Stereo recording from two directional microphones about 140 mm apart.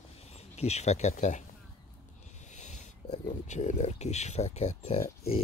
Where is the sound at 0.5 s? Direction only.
50° left (ahead or behind).